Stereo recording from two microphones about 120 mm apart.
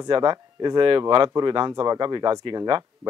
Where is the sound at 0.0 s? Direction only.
35° right (ahead or behind).